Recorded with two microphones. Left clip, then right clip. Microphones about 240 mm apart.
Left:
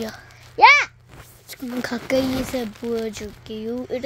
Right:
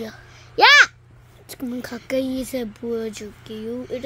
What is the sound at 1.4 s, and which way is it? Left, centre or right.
Speech, centre.